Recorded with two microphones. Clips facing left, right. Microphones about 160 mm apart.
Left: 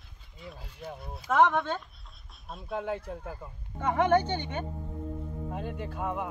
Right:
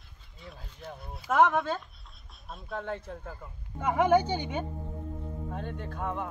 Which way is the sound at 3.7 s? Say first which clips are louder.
Right 1 dB; 10° right (ahead or behind).